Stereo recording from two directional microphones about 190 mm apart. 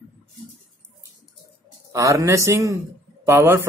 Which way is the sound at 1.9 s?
15° right (ahead or behind).